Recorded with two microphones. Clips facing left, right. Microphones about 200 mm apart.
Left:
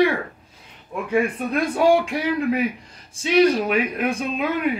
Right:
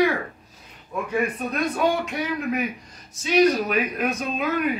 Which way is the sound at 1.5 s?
30° left (ahead or behind).